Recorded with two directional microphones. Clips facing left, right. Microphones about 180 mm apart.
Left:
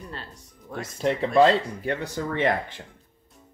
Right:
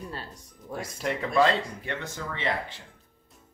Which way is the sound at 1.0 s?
30° left (ahead or behind).